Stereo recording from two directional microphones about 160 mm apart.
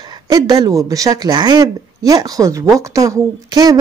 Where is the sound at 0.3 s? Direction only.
25° right (ahead or behind).